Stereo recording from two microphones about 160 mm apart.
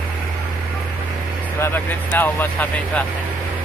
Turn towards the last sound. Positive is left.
turn(degrees=10)  # may be behind; listen again after turning